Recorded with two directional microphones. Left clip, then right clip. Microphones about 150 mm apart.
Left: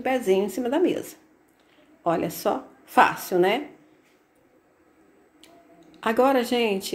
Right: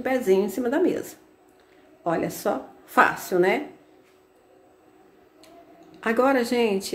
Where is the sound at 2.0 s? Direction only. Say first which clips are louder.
Left 1 dB; 5° left (ahead or behind).